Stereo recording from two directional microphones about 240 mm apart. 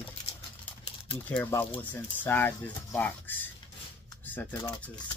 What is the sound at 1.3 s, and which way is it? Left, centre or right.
Speech, centre.